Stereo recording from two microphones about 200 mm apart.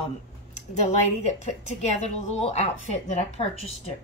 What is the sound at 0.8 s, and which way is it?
A woman's voice, 35° left (ahead or behind).